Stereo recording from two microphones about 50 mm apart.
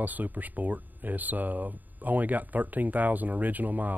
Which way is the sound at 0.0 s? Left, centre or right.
Right.